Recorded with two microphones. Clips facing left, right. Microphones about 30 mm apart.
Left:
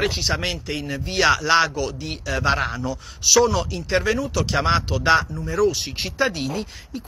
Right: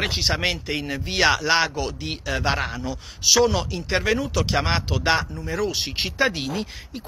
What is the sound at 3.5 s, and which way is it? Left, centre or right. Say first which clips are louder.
Speech: left 2 dB; centre.